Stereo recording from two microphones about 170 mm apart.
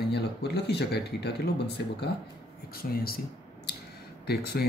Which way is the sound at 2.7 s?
60° left (ahead or behind).